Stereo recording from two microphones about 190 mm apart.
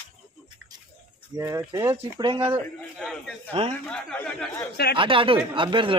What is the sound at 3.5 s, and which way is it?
Speech, 30° right (ahead or behind).